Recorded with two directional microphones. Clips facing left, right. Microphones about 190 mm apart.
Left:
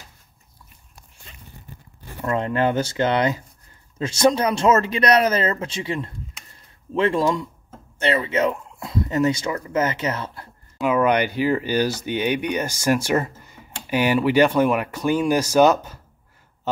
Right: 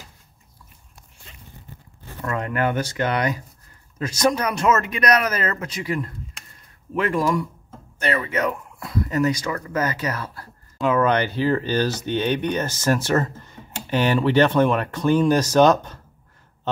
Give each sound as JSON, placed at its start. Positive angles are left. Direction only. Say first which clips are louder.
{"t": 2.2, "sound": "speech", "louder": "left 3 dB", "side_deg": 25}
{"t": 10.8, "sound": "speech", "louder": "left 1 dB", "side_deg": 15}